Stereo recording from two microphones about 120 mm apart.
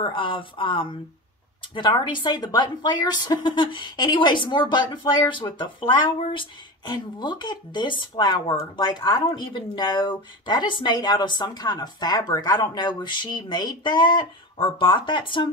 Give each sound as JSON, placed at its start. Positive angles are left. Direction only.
{"t": 0.0, "sound": "a woman's voice", "side_deg": 45}